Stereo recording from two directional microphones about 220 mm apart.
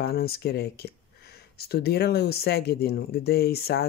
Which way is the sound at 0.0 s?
45° left (ahead or behind).